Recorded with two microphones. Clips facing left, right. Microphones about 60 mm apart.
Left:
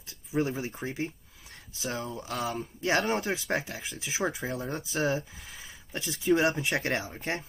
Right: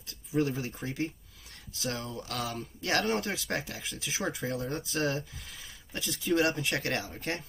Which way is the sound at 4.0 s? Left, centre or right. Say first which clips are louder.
Left 2 dB; left.